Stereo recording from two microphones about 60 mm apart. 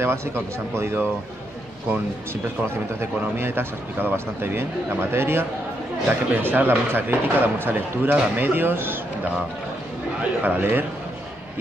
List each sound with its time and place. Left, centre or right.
0.0 s speech: right
3.2 s speech: right
10.4 s speech: right